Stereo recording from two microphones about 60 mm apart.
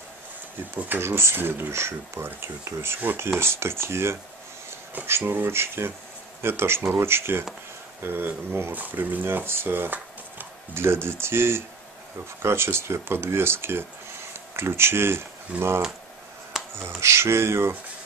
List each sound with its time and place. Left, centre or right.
0.7 s speech: right
1.0 s speech: right
15.5 s speech: right
16.7 s speech: right